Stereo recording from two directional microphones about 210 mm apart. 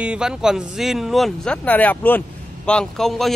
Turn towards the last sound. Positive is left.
turn(degrees=0)  # may be behind; listen again after turning